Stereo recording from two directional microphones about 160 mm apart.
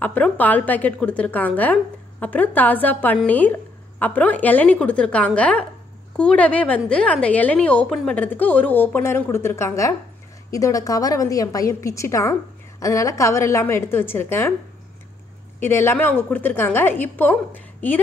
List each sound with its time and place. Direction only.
0.0 s a woman's voice: 10° left (ahead or behind)
15.6 s a woman's voice: 15° left (ahead or behind)